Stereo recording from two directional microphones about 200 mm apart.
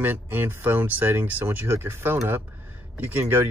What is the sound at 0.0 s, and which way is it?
Speech, 10° right (ahead or behind).